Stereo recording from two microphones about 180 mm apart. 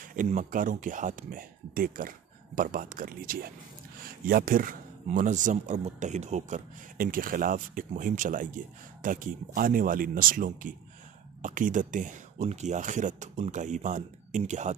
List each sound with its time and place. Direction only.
0.0 s speech: 45° right (ahead or behind)